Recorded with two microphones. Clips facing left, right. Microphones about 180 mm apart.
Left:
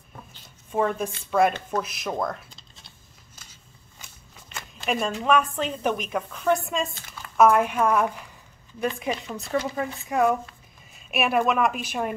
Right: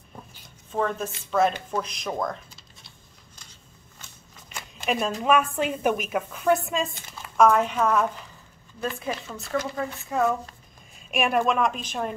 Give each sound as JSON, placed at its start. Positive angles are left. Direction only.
{"t": 0.7, "sound": "speech", "side_deg": 10}
{"t": 4.6, "sound": "a sound", "side_deg": 0}
{"t": 5.2, "sound": "speech", "side_deg": -5}
{"t": 10.9, "sound": "a woman's voice", "side_deg": 5}